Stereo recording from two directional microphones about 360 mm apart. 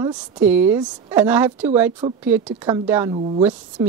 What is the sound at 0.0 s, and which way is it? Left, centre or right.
A woman's voice, centre.